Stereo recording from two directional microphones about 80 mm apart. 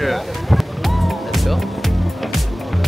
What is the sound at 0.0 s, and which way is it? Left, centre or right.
Music, centre.